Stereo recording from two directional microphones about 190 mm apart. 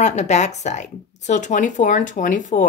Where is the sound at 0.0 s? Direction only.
35° left (ahead or behind).